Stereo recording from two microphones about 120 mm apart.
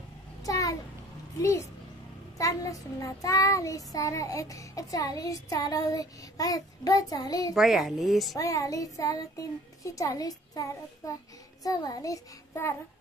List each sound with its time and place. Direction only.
0.4 s a sound: 30° left (ahead or behind)
1.4 s child singing: 25° left (ahead or behind)
7.5 s speech: centre (ahead or behind)
8.4 s child singing: 30° left (ahead or behind)